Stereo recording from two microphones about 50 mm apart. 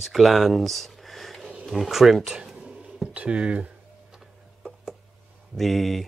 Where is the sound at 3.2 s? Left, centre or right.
Right.